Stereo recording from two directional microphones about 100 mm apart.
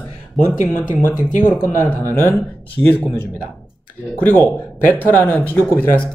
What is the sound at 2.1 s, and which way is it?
Speech, 20° left (ahead or behind).